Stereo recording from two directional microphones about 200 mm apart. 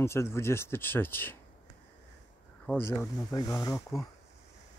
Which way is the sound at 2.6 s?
10° left (ahead or behind).